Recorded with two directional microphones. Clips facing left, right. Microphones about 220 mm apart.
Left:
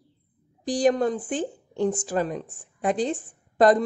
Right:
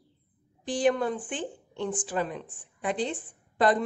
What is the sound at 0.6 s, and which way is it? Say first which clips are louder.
A woman's voice: left 4 dB; 40° left (ahead or behind).